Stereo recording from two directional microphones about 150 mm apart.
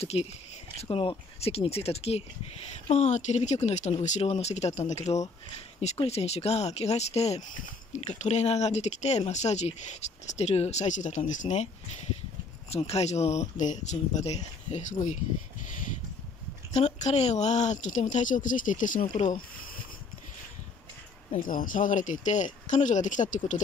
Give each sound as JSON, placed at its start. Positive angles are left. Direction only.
{"t": 0.0, "sound": "speech", "side_deg": 45}
{"t": 21.3, "sound": "speech", "side_deg": 65}